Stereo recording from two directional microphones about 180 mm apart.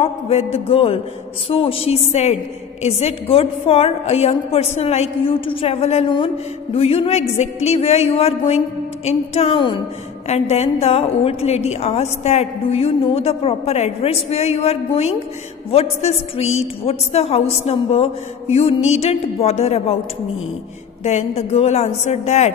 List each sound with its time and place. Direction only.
0.0 s a woman's voice: 35° left (ahead or behind)
21.0 s a woman's voice: 40° left (ahead or behind)